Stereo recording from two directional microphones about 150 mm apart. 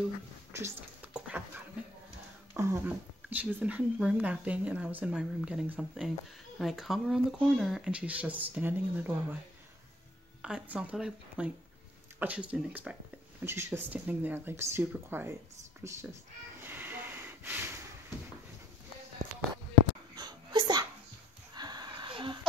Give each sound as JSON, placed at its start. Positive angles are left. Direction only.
{"t": 0.5, "sound": "a sound", "side_deg": -15}
{"t": 2.5, "sound": "speech", "side_deg": -15}
{"t": 10.4, "sound": "speech", "side_deg": -5}
{"t": 16.6, "sound": "sniff", "side_deg": -15}
{"t": 20.2, "sound": "sneeze", "side_deg": -30}
{"t": 21.5, "sound": "a sound", "side_deg": -30}